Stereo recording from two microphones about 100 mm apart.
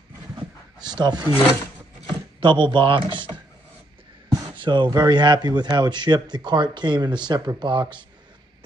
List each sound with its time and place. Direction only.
0.4 s a sound: 45° right (ahead or behind)
2.4 s speech: 50° right (ahead or behind)
4.6 s speech: 50° right (ahead or behind)